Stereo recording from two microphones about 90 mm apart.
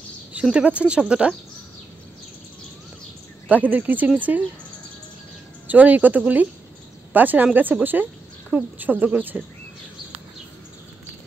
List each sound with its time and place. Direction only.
0.3 s speech: 15° right (ahead or behind)
3.4 s speech: 15° right (ahead or behind)
5.7 s speech: 20° right (ahead or behind)